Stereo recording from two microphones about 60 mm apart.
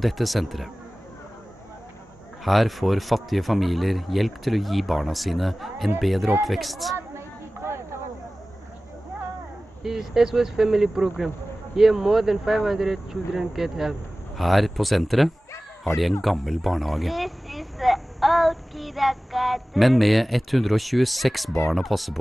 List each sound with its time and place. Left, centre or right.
0.0 s speech: centre
2.4 s speech: centre
7.0 s a sound: right
9.8 s speech: centre